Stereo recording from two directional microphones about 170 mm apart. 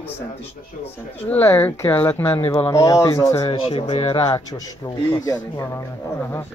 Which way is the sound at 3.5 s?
35° left (ahead or behind).